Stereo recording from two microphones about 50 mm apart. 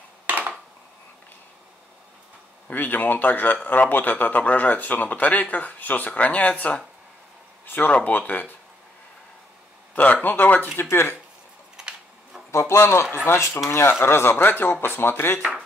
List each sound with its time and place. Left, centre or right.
0.3 s a sound: right
2.7 s speech: left
10.2 s speech: left
10.8 s speech: left
11.7 s a sound: centre
12.4 s speech: left